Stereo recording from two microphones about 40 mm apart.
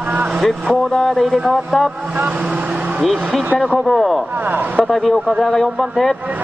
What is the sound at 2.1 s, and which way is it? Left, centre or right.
Speech, right.